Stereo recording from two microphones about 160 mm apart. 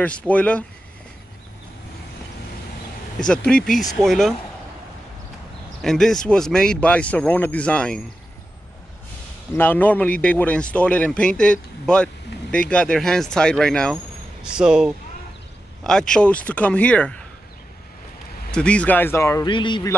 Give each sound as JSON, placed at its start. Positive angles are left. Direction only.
{"t": 0.0, "sound": "speech", "side_deg": 10}
{"t": 3.3, "sound": "speech", "side_deg": 5}
{"t": 5.8, "sound": "speech", "side_deg": 0}
{"t": 9.6, "sound": "speech", "side_deg": 10}
{"t": 18.5, "sound": "speech", "side_deg": 5}
{"t": 19.5, "sound": "speech", "side_deg": 30}